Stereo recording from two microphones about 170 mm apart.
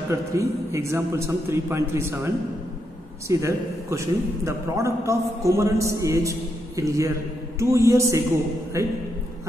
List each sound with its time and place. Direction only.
0.1 s a man's voice: 15° right (ahead or behind)